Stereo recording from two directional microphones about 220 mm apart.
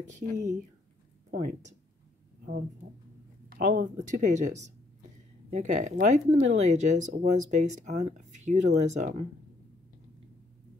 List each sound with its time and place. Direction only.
0.0 s speech: 35° right (ahead or behind)
3.4 s speech: 40° right (ahead or behind)